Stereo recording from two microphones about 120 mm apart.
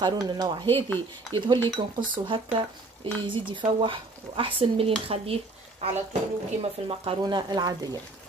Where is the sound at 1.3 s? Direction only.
40° right (ahead or behind).